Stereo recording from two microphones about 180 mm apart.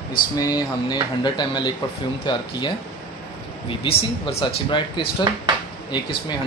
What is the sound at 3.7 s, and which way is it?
Speech, 30° left (ahead or behind).